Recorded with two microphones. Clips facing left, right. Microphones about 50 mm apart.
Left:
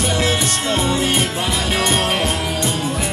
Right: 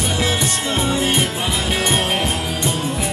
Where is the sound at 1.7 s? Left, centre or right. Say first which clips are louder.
Left 1 dB; centre.